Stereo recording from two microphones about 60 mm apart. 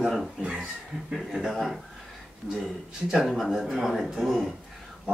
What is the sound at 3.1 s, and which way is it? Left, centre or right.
Speech, centre.